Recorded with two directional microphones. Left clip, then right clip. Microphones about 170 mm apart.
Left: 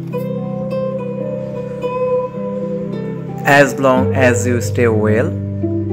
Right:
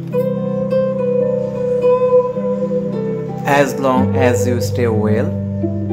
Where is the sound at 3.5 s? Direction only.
20° left (ahead or behind).